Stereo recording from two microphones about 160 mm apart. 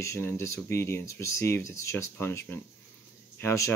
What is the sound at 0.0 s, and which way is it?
Speech, 15° left (ahead or behind).